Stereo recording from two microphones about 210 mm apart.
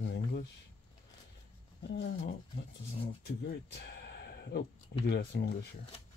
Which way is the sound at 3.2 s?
50° left (ahead or behind).